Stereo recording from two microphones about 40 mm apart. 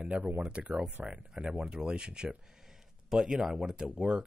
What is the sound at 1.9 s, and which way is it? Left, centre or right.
Speech, right.